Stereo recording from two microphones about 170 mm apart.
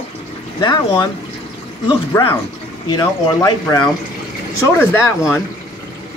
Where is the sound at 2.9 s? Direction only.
20° left (ahead or behind).